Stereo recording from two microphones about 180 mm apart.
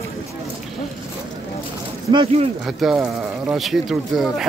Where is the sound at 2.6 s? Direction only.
Centre (ahead or behind).